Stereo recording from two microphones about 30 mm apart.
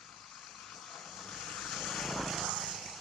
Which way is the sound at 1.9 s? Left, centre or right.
Centre.